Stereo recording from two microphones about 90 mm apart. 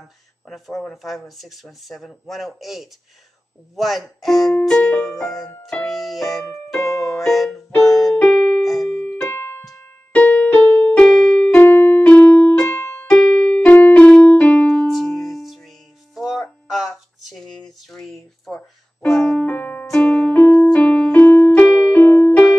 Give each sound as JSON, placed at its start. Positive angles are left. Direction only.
{"t": 0.5, "sound": "music", "side_deg": 0}
{"t": 8.2, "sound": "keyboard", "side_deg": 10}
{"t": 9.2, "sound": "keyboard", "side_deg": 30}
{"t": 10.1, "sound": "music", "side_deg": 15}
{"t": 13.1, "sound": "music", "side_deg": 10}
{"t": 13.7, "sound": "keyboard", "side_deg": 15}
{"t": 14.9, "sound": "music", "side_deg": 0}
{"t": 16.2, "sound": "a sound", "side_deg": 0}
{"t": 17.8, "sound": "keyboard", "side_deg": 0}
{"t": 19.9, "sound": "music", "side_deg": 10}
{"t": 21.5, "sound": "keyboard", "side_deg": 15}